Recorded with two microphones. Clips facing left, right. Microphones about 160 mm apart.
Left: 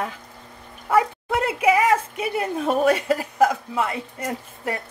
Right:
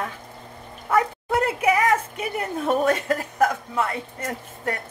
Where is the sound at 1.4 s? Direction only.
15° left (ahead or behind).